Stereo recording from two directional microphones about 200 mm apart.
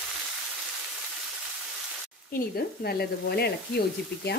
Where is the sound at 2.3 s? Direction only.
50° left (ahead or behind).